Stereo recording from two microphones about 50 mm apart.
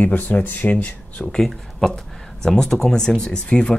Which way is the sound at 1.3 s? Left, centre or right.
Centre.